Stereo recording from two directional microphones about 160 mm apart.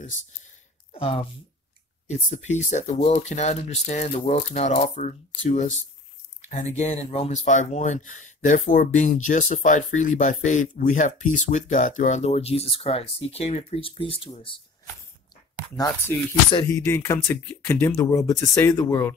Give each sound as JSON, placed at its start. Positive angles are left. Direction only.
{"t": 0.9, "sound": "speech", "side_deg": 35}
{"t": 16.6, "sound": "speech", "side_deg": 15}